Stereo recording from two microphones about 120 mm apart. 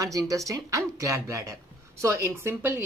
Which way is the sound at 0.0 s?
30° right (ahead or behind).